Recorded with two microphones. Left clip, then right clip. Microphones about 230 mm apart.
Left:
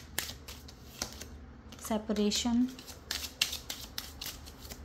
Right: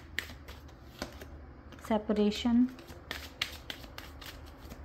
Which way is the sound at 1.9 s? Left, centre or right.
Centre.